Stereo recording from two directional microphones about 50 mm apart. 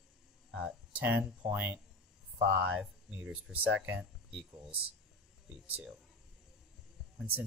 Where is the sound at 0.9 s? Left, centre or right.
Right.